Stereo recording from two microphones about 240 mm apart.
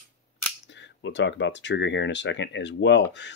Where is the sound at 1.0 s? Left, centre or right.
Left.